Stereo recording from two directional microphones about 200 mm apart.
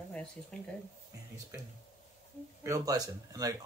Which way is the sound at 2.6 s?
15° right (ahead or behind).